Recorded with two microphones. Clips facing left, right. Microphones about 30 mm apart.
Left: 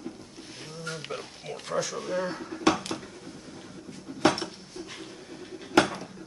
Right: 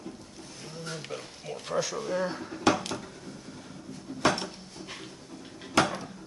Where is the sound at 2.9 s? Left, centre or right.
Left.